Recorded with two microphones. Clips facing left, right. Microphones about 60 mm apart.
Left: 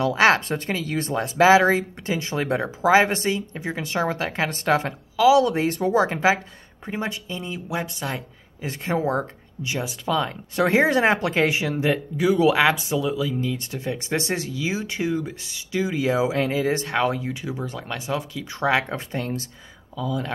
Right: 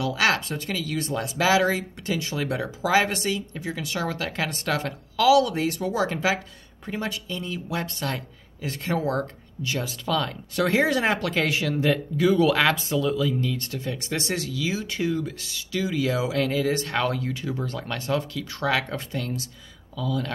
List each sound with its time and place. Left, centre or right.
0.0 s speech: left
5.1 s speech: centre
5.4 s speech: left
20.0 s speech: centre